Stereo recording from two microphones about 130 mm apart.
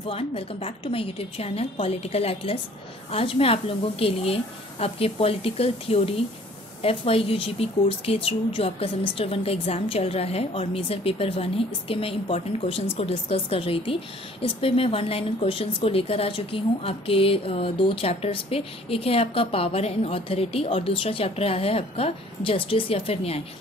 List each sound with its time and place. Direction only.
0.1 s a woman's voice: 50° left (ahead or behind)